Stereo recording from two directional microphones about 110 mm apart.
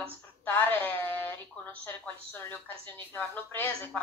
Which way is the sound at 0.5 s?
20° left (ahead or behind).